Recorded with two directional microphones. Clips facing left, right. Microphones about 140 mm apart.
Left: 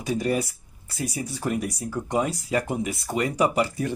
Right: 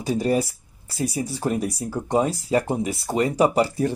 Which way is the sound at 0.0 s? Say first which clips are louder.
Right 3 dB; 30° right (ahead or behind).